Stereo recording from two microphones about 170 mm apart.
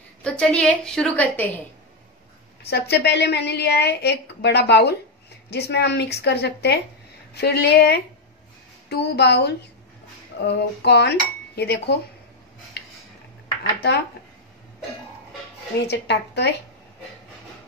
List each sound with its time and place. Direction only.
0.2 s a woman's voice: 5° left (ahead or behind)
2.6 s a woman's voice: 70° left (ahead or behind)
15.9 s a woman's voice: 80° left